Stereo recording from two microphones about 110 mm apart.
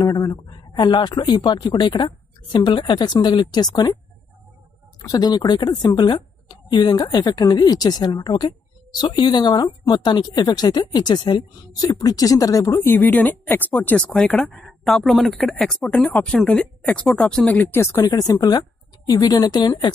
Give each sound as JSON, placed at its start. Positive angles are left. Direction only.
{"t": 0.1, "sound": "speech", "side_deg": 35}
{"t": 5.0, "sound": "speech", "side_deg": 40}
{"t": 12.8, "sound": "speech", "side_deg": 15}
{"t": 18.0, "sound": "speech", "side_deg": 35}